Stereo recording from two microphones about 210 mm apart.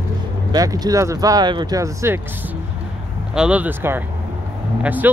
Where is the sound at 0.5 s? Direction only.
15° right (ahead or behind).